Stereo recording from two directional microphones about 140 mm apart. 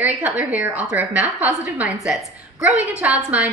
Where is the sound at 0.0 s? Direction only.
10° right (ahead or behind).